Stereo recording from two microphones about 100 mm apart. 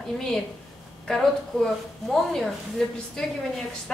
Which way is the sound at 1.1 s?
5° left (ahead or behind).